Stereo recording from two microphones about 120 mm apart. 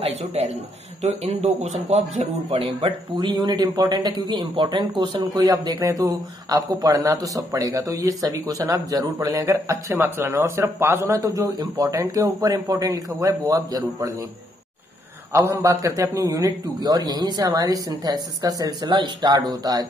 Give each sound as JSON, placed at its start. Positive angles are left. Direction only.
{"t": 0.0, "sound": "speech", "side_deg": -60}
{"t": 2.5, "sound": "speech", "side_deg": -45}
{"t": 15.3, "sound": "a man's voice", "side_deg": -25}